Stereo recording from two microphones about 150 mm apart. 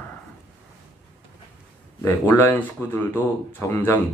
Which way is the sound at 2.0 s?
20° left (ahead or behind).